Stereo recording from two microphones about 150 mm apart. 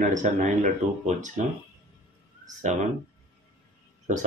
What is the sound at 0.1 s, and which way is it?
Speech, 55° right (ahead or behind).